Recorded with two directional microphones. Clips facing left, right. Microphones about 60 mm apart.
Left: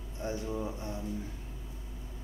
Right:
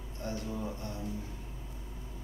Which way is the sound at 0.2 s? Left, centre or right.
Centre.